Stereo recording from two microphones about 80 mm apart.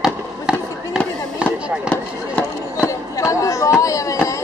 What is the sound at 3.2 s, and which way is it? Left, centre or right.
Chatter, left.